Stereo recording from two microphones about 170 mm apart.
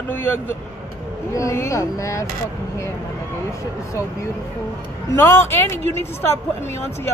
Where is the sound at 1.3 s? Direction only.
20° left (ahead or behind).